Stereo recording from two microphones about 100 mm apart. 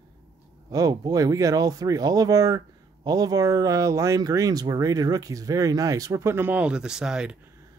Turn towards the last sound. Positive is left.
turn(degrees=-5)  # may be behind; listen again after turning